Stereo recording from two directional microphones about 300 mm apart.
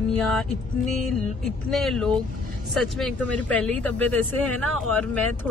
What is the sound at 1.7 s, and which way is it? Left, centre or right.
Speech, centre.